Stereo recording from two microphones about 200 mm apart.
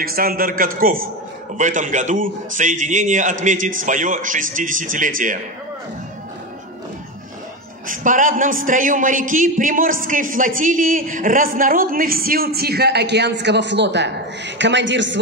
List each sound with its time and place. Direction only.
0.0 s a man's voice: 50° right (ahead or behind)
7.9 s a man's voice: 40° right (ahead or behind); by 15.1 s 65° right (ahead or behind)